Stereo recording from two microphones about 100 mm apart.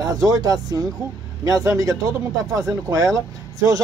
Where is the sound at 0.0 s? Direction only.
35° right (ahead or behind).